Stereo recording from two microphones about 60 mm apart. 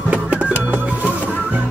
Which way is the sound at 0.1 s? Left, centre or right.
Right.